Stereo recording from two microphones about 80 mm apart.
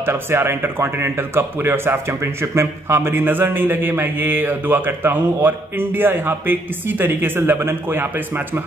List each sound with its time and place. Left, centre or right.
0.0 s a man's voice: right